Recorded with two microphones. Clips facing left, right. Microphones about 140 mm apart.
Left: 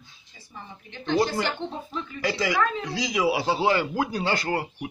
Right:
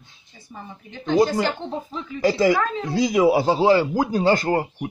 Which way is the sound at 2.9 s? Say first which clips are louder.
Right 10 dB; 50° right (ahead or behind).